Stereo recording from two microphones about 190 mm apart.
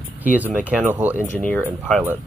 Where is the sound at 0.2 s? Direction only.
10° right (ahead or behind).